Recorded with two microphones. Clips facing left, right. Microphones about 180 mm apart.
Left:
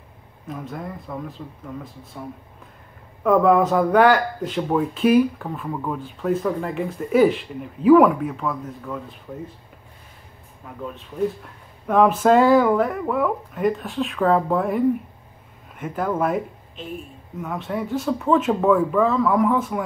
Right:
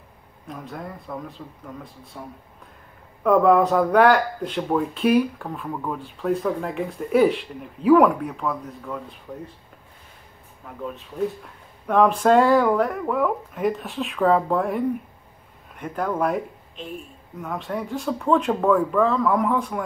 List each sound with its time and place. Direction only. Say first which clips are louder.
0.5 s speech: left 3 dB; centre (ahead or behind)
3.3 s speech: even; centre (ahead or behind)
10.6 s speech: even; centre (ahead or behind)